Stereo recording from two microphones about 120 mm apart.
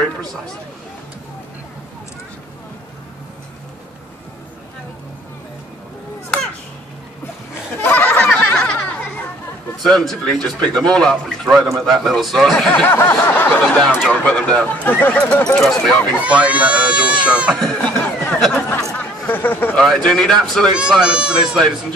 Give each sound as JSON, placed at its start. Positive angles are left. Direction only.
{"t": 7.8, "sound": "a sound", "side_deg": 15}
{"t": 9.8, "sound": "speech", "side_deg": 5}
{"t": 12.8, "sound": "speech", "side_deg": 15}
{"t": 16.2, "sound": "speech", "side_deg": -10}
{"t": 17.6, "sound": "a sound", "side_deg": 5}
{"t": 19.8, "sound": "speech", "side_deg": 5}